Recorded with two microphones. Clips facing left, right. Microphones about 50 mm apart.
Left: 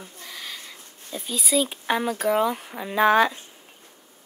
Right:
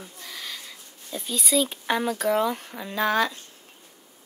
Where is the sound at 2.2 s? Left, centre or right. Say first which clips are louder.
Left 1 dB; centre.